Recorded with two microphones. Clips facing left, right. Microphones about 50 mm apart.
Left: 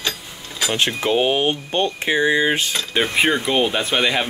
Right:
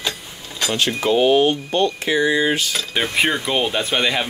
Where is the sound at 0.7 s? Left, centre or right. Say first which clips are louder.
Right 1 dB; left.